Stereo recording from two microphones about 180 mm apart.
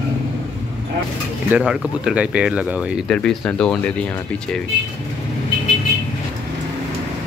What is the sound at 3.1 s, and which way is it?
Speech, 5° left (ahead or behind).